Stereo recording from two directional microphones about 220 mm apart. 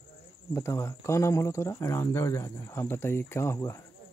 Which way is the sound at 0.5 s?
15° left (ahead or behind).